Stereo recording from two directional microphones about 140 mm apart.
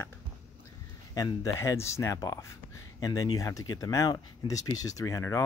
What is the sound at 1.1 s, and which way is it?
Speech, 25° left (ahead or behind).